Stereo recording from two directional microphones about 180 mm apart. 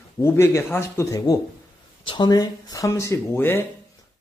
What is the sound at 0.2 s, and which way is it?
Speech, 15° left (ahead or behind).